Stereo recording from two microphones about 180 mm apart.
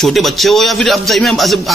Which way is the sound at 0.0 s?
Centre (ahead or behind).